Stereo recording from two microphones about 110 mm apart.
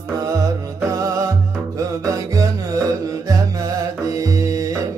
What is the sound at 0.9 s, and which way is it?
Music, 30° right (ahead or behind).